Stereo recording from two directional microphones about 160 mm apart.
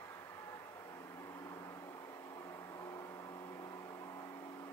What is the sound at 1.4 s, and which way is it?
Vehicle, 20° left (ahead or behind).